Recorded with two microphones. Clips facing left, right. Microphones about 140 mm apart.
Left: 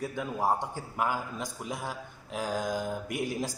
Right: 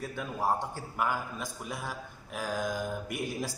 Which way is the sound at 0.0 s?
15° left (ahead or behind).